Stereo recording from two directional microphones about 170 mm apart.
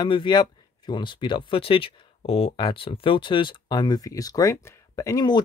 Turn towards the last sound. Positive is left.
turn(degrees=25)  # may be behind; listen again after turning